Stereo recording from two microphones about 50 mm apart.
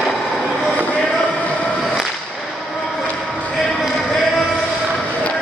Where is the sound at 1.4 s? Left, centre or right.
Left.